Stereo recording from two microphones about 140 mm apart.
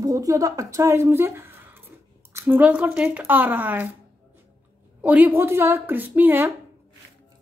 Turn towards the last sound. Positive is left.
turn(degrees=-15)  # may be behind; listen again after turning